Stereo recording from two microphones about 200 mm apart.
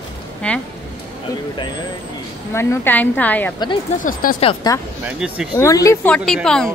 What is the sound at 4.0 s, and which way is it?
Speech, 45° left (ahead or behind).